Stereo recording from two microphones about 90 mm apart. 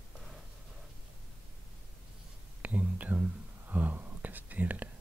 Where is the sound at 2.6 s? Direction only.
15° right (ahead or behind).